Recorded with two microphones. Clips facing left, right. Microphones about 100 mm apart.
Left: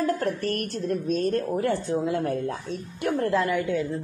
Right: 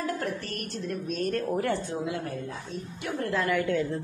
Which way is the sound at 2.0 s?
45° left (ahead or behind).